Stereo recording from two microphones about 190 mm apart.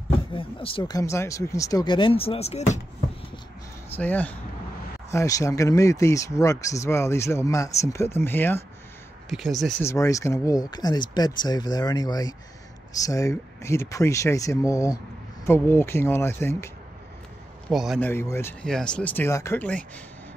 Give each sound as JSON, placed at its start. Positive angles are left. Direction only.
{"t": 0.3, "sound": "speech", "side_deg": 30}
{"t": 3.9, "sound": "speech", "side_deg": 10}
{"t": 9.3, "sound": "speech", "side_deg": 0}
{"t": 9.8, "sound": "speech", "side_deg": 15}
{"t": 17.6, "sound": "speech", "side_deg": 0}
{"t": 18.0, "sound": "speech", "side_deg": 10}